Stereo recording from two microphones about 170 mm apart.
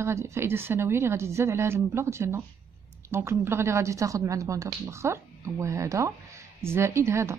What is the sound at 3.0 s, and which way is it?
A woman's voice, 15° right (ahead or behind).